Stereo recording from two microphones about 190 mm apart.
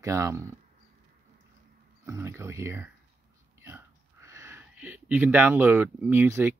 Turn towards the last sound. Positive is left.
turn(degrees=-10)  # may be behind; listen again after turning